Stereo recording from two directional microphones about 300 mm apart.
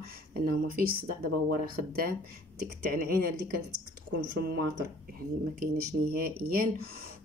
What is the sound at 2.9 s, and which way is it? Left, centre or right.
Speech, right.